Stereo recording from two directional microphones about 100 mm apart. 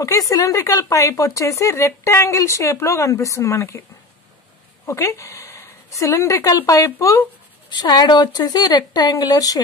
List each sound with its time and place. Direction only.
0.3 s speech: 35° left (ahead or behind)
4.8 s a woman's voice: 30° left (ahead or behind)
7.7 s a woman's voice: 45° left (ahead or behind)